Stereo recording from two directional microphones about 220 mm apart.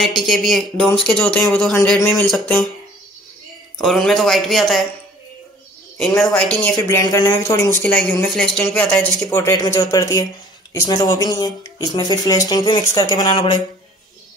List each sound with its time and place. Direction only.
0.0 s speech: centre (ahead or behind)
3.7 s speech: centre (ahead or behind)
5.9 s speech: centre (ahead or behind); by 13.6 s 20° left (ahead or behind)